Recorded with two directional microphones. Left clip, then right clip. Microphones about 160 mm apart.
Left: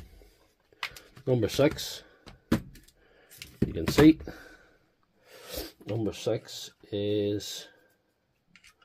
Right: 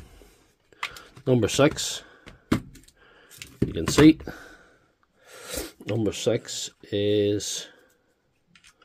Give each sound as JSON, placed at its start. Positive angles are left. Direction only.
{"t": 1.2, "sound": "speech", "side_deg": -30}
{"t": 1.8, "sound": "a sound", "side_deg": -30}
{"t": 5.2, "sound": "speech", "side_deg": -35}